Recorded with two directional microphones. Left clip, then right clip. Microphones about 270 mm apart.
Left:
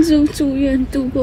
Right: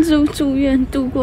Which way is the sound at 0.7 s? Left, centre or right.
Right.